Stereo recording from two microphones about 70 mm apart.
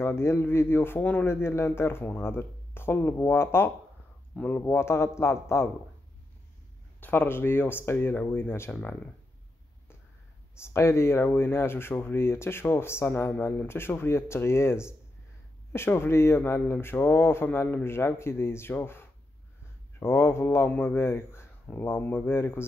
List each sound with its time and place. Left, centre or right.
0.0 s speech: left
1.2 s speech: left
7.0 s speech: left
10.6 s speech: left